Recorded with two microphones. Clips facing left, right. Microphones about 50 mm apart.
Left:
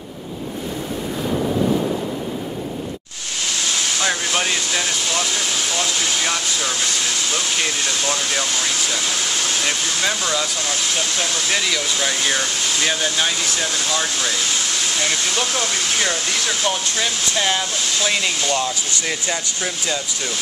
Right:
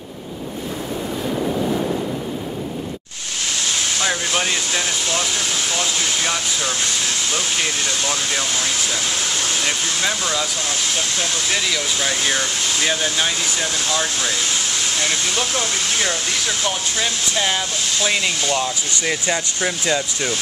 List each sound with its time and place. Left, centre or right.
4.0 s speech: centre
19.2 s speech: right